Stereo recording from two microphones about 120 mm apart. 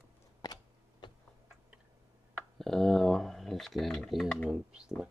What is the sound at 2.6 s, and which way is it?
Speech, 5° left (ahead or behind).